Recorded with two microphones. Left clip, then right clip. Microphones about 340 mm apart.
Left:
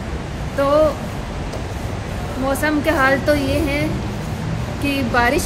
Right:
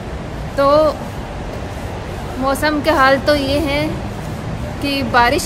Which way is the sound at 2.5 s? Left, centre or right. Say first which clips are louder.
Right 3 dB; centre.